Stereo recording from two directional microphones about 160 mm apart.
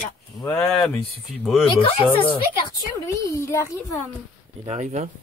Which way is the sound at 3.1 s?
15° left (ahead or behind).